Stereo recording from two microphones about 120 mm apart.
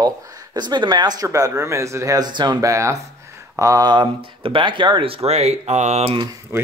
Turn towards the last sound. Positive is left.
turn(degrees=-20)  # may be behind; listen again after turning